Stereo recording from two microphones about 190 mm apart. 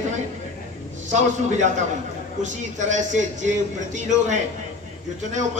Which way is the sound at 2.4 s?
40° right (ahead or behind).